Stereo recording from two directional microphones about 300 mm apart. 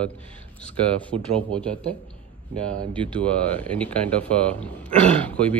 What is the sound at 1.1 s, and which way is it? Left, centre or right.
Speech, right.